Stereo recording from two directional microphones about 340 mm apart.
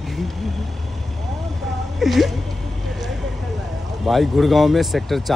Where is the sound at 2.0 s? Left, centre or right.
Centre.